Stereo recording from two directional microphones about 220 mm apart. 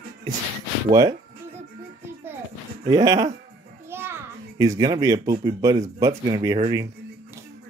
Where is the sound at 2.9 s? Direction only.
15° right (ahead or behind).